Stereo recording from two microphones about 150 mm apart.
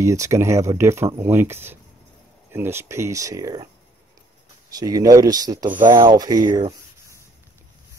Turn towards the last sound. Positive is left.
turn(degrees=-25)  # may be behind; listen again after turning